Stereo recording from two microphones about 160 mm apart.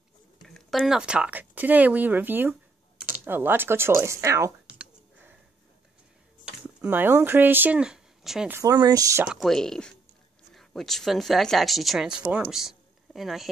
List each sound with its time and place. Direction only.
0.5 s speech: centre (ahead or behind); by 4.5 s 20° right (ahead or behind)
6.4 s speech: 10° right (ahead or behind)
8.5 s speech: 25° right (ahead or behind)
9.2 s speech: centre (ahead or behind)